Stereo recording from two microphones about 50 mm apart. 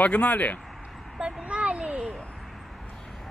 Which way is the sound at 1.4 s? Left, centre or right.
Right.